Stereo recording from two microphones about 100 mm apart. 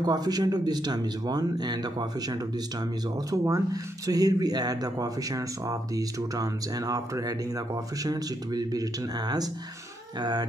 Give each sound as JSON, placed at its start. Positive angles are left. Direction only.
{"t": 0.0, "sound": "speech", "side_deg": -40}
{"t": 3.3, "sound": "speech", "side_deg": -35}